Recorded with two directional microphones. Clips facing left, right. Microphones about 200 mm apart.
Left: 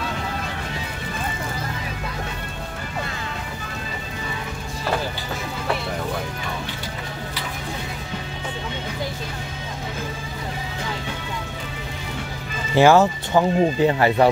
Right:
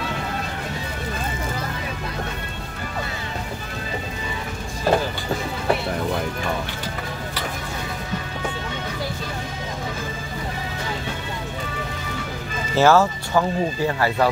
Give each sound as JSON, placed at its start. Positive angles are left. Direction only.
{"t": 12.7, "sound": "speech", "side_deg": 15}